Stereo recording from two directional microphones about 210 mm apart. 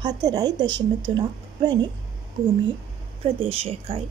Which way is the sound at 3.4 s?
25° right (ahead or behind).